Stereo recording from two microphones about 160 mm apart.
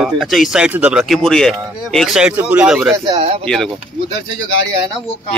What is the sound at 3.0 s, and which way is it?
Speech, 35° right (ahead or behind).